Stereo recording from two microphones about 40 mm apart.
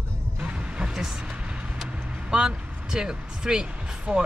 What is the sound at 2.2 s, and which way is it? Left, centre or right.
Speech, right.